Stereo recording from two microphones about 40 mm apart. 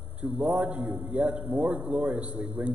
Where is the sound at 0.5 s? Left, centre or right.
Right.